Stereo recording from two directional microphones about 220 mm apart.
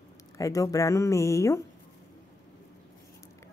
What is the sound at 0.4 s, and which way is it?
Speech, 15° left (ahead or behind).